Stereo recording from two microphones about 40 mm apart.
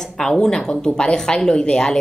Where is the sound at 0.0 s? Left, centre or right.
Centre.